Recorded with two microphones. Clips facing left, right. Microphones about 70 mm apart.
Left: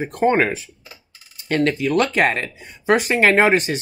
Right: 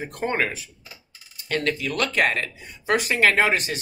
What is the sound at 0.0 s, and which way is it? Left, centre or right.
Speech, left.